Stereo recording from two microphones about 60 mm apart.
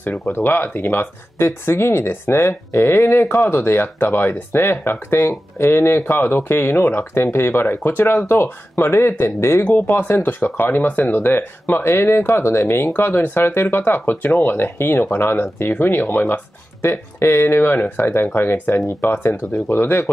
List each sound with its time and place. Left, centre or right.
0.3 s speech: left
9.7 s speech: left